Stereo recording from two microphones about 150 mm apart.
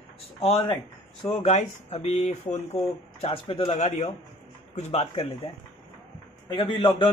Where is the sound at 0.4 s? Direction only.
40° left (ahead or behind).